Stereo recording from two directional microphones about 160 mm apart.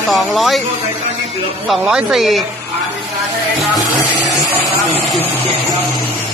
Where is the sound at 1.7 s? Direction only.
5° right (ahead or behind).